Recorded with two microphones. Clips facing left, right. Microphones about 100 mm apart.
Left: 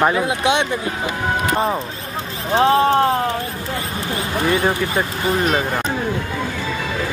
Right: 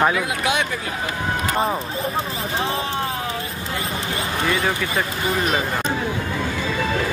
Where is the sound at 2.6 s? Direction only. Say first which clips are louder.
Left 12 dB; 55° left (ahead or behind).